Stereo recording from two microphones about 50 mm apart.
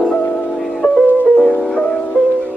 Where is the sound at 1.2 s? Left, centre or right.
Left.